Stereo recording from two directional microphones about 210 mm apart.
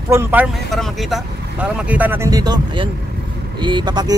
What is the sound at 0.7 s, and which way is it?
Speech, centre (ahead or behind).